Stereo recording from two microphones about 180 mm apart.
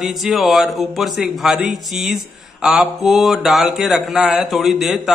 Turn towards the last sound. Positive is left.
turn(degrees=0)  # may be behind; listen again after turning